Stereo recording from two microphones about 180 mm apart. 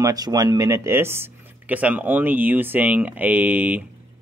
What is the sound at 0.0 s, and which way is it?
Speech, 20° right (ahead or behind).